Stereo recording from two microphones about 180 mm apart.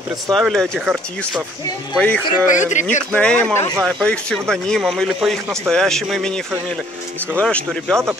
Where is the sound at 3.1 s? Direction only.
5° left (ahead or behind).